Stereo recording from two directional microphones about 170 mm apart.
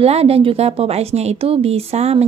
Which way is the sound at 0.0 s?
35° right (ahead or behind).